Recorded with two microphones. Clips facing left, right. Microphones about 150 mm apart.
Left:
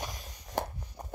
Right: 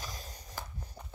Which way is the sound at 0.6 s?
65° left (ahead or behind).